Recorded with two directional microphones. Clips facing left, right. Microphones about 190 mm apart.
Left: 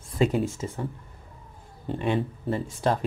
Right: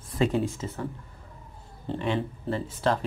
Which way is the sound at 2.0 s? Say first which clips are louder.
Left 3 dB; 15° left (ahead or behind).